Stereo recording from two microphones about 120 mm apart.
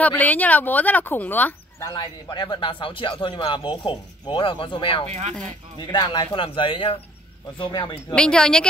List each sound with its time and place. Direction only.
0.0 s speech: 15° left (ahead or behind)
1.8 s speech: 25° left (ahead or behind)
2.2 s speech: 40° left (ahead or behind)
8.1 s speech: 10° left (ahead or behind)